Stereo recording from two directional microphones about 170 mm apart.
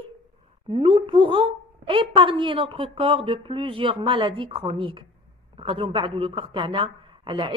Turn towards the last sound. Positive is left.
turn(degrees=-30)  # may be behind; listen again after turning